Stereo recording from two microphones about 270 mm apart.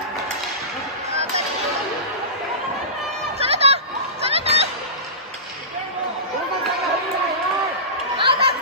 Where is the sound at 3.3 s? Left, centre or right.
Right.